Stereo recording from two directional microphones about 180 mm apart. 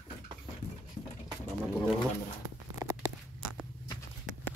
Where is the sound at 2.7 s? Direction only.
15° right (ahead or behind).